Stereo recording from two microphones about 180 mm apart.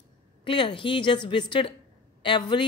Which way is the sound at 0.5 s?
30° left (ahead or behind).